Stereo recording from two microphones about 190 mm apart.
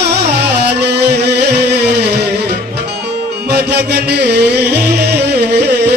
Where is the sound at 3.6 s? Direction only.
60° right (ahead or behind).